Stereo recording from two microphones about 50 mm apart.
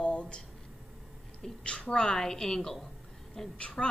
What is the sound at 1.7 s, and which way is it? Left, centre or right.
Speech, left.